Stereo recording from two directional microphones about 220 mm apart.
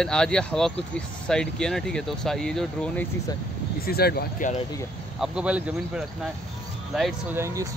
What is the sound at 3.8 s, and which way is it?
Speech, 45° left (ahead or behind).